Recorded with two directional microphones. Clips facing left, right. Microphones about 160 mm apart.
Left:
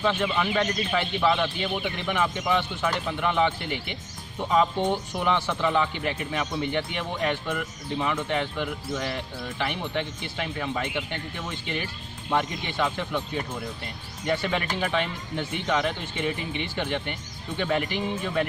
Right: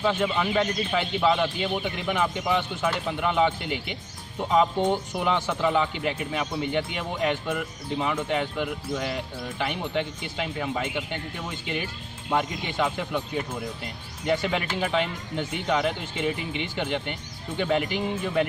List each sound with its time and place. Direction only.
0.0 s speech: 15° right (ahead or behind)